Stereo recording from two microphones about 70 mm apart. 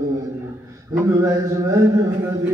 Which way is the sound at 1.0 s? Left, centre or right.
Right.